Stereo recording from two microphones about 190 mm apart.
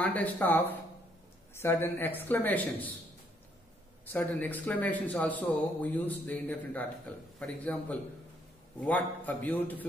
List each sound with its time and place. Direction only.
0.0 s speech: 10° left (ahead or behind)
4.0 s speech: 10° left (ahead or behind)